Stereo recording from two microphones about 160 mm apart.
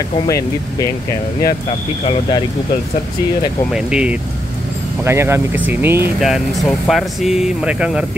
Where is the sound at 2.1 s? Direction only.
30° left (ahead or behind).